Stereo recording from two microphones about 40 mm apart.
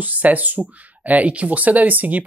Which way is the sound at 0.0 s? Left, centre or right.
Right.